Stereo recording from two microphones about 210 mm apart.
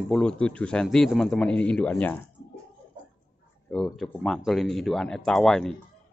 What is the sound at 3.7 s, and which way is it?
A man's voice, centre (ahead or behind).